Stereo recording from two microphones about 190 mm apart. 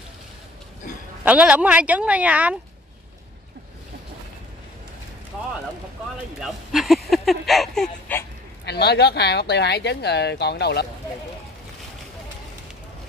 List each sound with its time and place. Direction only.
1.2 s speech: 5° right (ahead or behind)
6.4 s speech: centre (ahead or behind)
8.6 s speech: 60° left (ahead or behind)